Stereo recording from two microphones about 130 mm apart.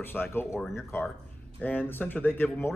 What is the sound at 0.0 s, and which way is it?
Speech, 15° left (ahead or behind).